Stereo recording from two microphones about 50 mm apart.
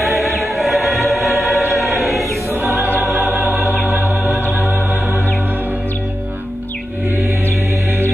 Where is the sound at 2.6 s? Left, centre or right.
Right.